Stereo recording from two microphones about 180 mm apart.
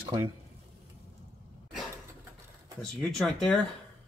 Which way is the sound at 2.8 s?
5° left (ahead or behind).